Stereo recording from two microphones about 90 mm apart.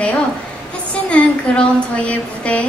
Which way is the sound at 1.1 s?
15° left (ahead or behind).